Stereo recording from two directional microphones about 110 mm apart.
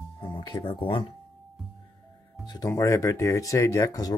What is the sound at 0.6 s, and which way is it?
Speech, 55° left (ahead or behind).